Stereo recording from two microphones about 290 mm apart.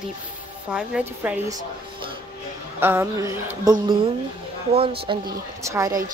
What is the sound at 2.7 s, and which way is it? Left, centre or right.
Speech, centre.